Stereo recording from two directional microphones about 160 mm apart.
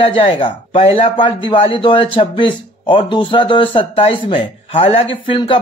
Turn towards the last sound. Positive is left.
turn(degrees=30)  # may be behind; listen again after turning